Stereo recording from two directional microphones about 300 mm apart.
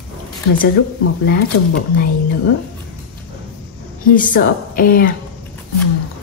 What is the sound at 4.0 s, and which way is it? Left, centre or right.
A woman's voice, left.